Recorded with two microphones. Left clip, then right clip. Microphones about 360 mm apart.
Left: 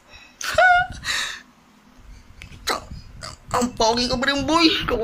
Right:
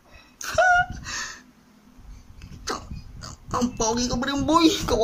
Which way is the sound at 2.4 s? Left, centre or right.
Centre.